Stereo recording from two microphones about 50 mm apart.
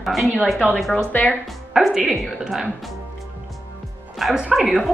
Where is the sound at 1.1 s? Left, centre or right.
Left.